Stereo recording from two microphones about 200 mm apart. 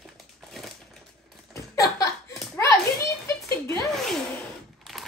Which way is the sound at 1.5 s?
15° left (ahead or behind).